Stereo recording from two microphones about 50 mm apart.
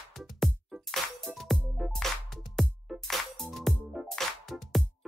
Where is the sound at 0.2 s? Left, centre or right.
Centre.